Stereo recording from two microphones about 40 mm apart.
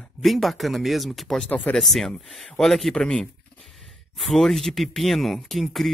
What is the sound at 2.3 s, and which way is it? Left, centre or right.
Speech, centre.